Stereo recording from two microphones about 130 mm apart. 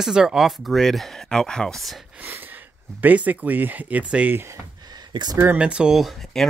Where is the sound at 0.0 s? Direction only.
5° right (ahead or behind).